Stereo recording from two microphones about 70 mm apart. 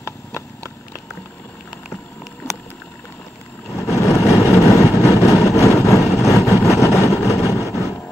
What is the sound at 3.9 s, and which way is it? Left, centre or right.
Vehicle, left.